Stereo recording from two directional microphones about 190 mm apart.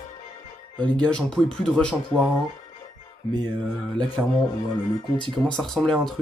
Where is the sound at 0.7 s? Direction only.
5° left (ahead or behind).